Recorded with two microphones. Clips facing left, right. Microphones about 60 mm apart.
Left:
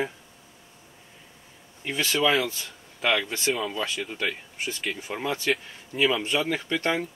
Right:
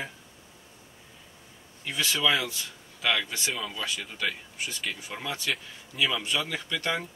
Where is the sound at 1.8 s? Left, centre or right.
Left.